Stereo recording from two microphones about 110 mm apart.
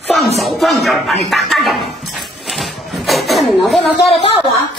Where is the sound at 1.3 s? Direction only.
Centre (ahead or behind).